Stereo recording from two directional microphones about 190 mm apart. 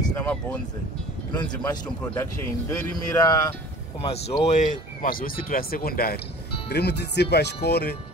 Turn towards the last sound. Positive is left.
turn(degrees=55)  # may be behind; listen again after turning